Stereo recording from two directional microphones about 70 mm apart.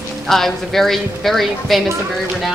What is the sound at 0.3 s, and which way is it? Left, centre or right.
Speech, centre.